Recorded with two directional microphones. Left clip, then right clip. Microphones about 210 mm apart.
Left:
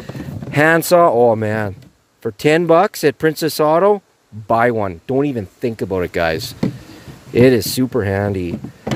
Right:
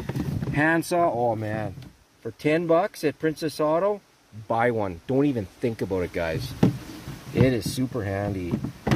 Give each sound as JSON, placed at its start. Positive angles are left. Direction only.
{"t": 0.5, "sound": "speech", "side_deg": 55}
{"t": 4.5, "sound": "speech", "side_deg": 40}
{"t": 7.4, "sound": "speech", "side_deg": 55}